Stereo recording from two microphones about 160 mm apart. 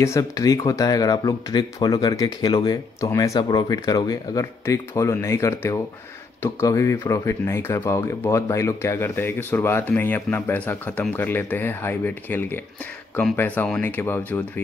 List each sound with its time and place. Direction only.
0.0 s speech: 20° left (ahead or behind)